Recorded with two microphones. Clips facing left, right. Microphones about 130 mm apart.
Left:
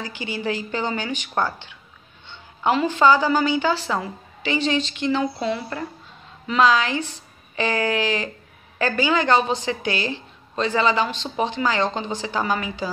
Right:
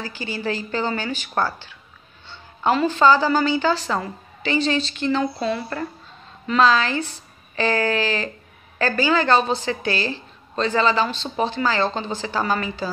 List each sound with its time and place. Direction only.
0.0 s a woman's voice: 15° left (ahead or behind)